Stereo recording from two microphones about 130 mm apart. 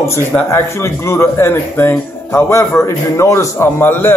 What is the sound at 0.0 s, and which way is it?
Speech, 20° left (ahead or behind).